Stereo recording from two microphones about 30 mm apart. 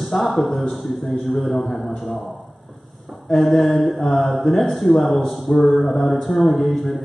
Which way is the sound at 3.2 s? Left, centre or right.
Centre.